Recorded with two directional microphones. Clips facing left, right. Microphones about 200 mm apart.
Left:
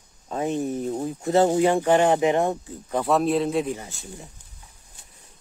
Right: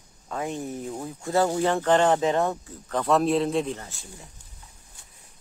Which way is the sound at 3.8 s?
20° left (ahead or behind).